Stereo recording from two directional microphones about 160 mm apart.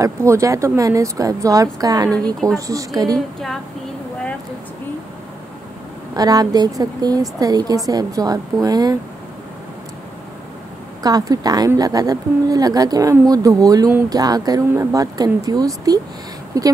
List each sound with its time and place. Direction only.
0.0 s speech: 20° right (ahead or behind)
6.1 s speech: 25° right (ahead or behind)
11.0 s speech: 25° right (ahead or behind)